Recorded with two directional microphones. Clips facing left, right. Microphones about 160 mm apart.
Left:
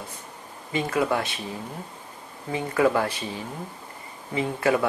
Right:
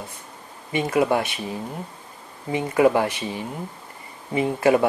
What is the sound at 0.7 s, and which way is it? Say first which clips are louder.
Speech: right 4 dB; 20° right (ahead or behind).